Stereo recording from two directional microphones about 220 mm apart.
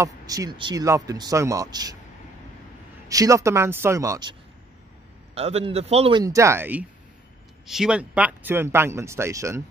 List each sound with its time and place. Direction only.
0.0 s speech: 15° right (ahead or behind)
3.1 s speech: 15° right (ahead or behind)
5.3 s a man's voice: 30° right (ahead or behind)